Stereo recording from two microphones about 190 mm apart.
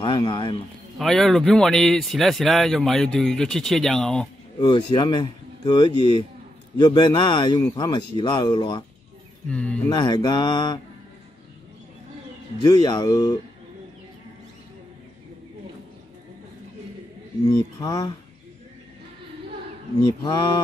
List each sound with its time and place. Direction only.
0.0 s speech: 25° left (ahead or behind)
0.9 s speech: centre (ahead or behind)
4.6 s a man's voice: 25° left (ahead or behind)
9.5 s speech: 5° left (ahead or behind)
9.9 s a man's voice: 25° left (ahead or behind)
12.6 s a man's voice: 20° left (ahead or behind)
17.5 s a man's voice: 20° left (ahead or behind)
20.2 s a man's voice: 20° left (ahead or behind)